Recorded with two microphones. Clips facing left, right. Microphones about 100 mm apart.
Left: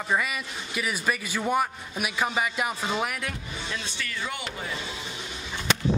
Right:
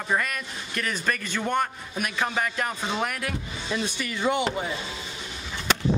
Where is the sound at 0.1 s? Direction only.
5° left (ahead or behind).